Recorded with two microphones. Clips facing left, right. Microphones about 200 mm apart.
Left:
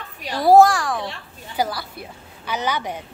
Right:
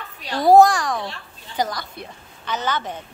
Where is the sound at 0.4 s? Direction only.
Centre (ahead or behind).